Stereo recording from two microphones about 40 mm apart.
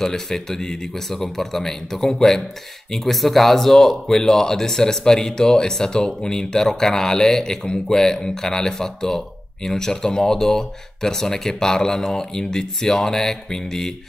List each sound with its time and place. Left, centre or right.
0.0 s speech: centre